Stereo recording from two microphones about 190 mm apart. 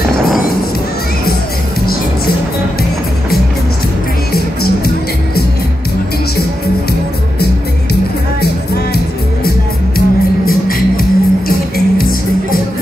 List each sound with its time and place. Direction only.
9.9 s music: 50° left (ahead or behind)